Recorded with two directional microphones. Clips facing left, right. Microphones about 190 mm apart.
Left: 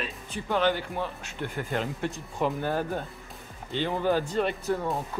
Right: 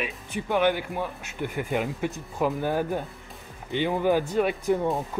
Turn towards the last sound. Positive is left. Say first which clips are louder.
# right 4 dB
turn(degrees=-10)  # may be behind; listen again after turning